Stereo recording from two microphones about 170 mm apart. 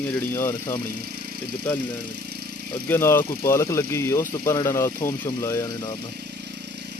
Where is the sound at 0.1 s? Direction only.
10° left (ahead or behind).